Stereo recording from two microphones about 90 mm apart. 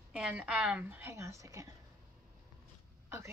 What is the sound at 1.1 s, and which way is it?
Speech, 35° right (ahead or behind).